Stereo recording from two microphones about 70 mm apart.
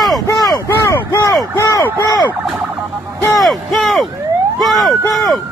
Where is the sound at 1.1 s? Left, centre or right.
Left.